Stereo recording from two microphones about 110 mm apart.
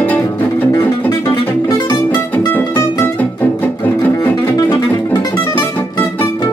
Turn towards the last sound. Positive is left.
turn(degrees=35)  # may be behind; listen again after turning